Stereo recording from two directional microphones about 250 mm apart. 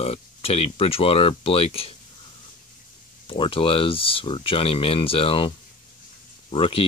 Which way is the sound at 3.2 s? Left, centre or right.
Left.